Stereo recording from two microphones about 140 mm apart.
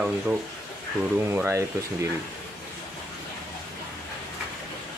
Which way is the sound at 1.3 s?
15° right (ahead or behind).